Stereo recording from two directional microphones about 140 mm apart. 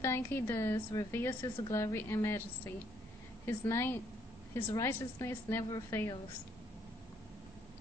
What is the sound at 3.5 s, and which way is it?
A woman's voice, 15° left (ahead or behind).